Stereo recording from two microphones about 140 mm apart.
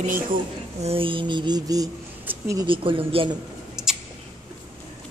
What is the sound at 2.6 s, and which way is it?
Mantra, 40° right (ahead or behind).